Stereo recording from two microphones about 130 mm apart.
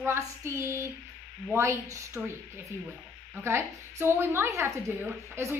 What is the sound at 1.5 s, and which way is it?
Speech, 20° right (ahead or behind).